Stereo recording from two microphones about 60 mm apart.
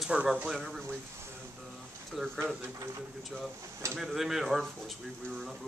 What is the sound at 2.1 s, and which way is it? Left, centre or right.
Speech, centre.